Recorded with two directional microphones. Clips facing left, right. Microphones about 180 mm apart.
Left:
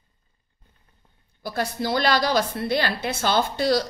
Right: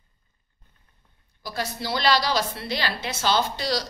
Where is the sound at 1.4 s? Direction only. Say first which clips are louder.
Left 4 dB; 55° left (ahead or behind).